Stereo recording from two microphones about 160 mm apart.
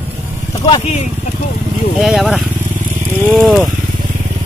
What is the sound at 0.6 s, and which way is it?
Speech, 40° left (ahead or behind).